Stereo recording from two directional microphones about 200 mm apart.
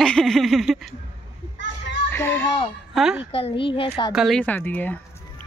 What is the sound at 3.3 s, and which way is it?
Speech, 30° left (ahead or behind).